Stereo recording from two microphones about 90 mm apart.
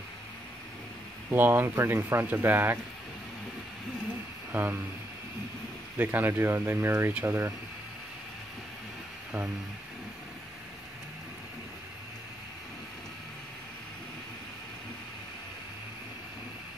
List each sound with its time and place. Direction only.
1.3 s speech: 25° right (ahead or behind)
4.5 s speech: 20° right (ahead or behind)
5.9 s speech: 20° right (ahead or behind)